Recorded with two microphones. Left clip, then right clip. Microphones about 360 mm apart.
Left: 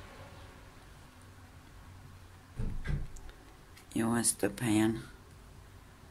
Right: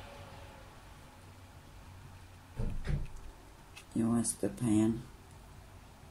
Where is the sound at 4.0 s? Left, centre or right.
Left.